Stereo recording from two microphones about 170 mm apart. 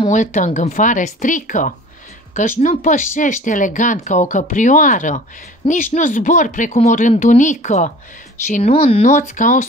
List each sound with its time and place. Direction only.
0.1 s speech: 45° left (ahead or behind)
5.6 s speech: 30° left (ahead or behind)
5.9 s speech: 50° left (ahead or behind)
8.7 s speech: 35° left (ahead or behind)